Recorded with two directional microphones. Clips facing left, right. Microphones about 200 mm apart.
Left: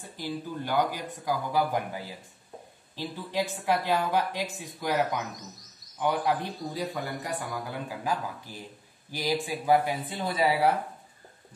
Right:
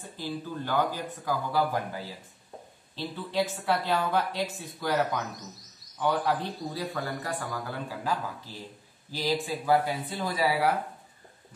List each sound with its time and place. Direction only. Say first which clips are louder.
0.2 s a man's voice: left 1 dB; 15° left (ahead or behind)